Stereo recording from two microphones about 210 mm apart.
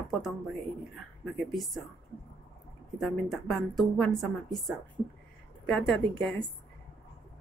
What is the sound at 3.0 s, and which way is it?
A woman's voice, centre (ahead or behind).